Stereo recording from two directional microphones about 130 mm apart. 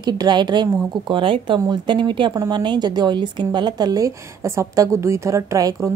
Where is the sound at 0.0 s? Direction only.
35° right (ahead or behind).